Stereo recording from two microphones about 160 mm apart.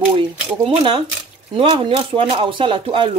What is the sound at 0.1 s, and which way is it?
Speech, 30° right (ahead or behind).